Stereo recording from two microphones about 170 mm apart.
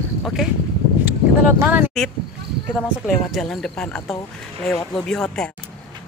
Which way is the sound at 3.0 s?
Centre (ahead or behind).